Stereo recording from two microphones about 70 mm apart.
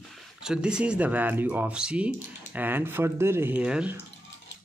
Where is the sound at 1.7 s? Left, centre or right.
Centre; by 3.5 s right.